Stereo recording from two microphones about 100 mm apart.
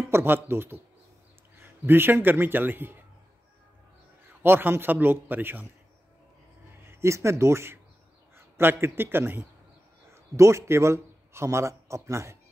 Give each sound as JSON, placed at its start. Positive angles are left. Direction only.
{"t": 0.1, "sound": "a man's voice", "side_deg": -25}
{"t": 4.4, "sound": "a man's voice", "side_deg": -20}
{"t": 6.8, "sound": "a man's voice", "side_deg": -25}